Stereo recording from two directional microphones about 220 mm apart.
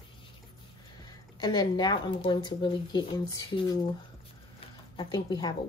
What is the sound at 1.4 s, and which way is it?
A woman's voice, 20° left (ahead or behind).